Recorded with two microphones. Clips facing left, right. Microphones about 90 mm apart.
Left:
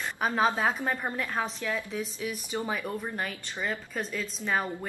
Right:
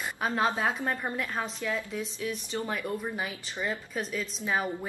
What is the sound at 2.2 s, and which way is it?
Speech, 10° left (ahead or behind).